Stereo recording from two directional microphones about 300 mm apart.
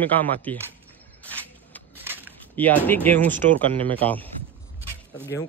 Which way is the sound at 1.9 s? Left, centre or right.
Centre.